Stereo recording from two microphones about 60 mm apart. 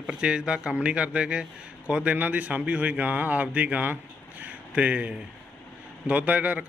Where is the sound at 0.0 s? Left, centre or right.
Centre.